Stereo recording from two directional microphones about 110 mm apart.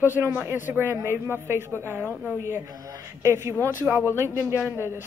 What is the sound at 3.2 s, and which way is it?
A woman's voice, 25° right (ahead or behind).